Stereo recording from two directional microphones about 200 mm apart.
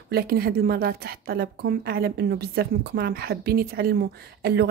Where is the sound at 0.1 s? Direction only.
50° right (ahead or behind).